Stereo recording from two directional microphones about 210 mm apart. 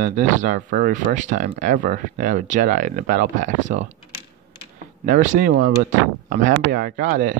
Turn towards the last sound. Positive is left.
turn(degrees=-40)  # may be behind; listen again after turning